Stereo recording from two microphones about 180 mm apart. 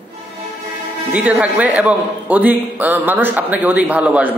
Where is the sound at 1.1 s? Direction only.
10° right (ahead or behind).